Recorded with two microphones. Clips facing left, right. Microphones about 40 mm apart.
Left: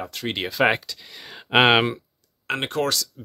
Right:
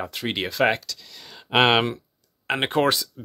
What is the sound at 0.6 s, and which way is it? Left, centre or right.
Speech, centre.